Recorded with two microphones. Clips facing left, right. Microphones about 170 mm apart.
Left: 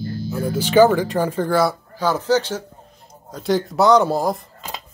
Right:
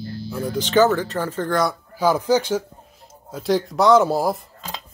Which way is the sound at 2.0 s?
10° right (ahead or behind).